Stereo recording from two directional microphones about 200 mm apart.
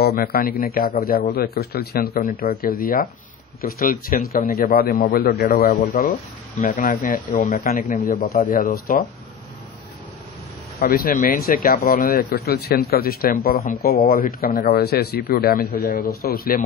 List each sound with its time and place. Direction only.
0.0 s speech: 50° left (ahead or behind)
10.8 s speech: 50° left (ahead or behind)